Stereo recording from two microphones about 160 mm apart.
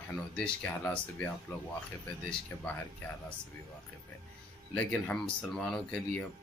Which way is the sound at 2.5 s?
15° left (ahead or behind).